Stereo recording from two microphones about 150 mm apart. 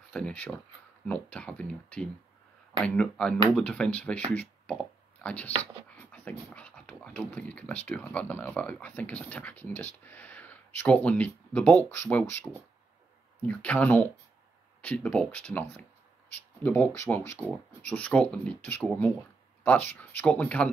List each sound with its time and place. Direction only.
0.1 s speech: 10° left (ahead or behind)
13.5 s speech: 10° left (ahead or behind)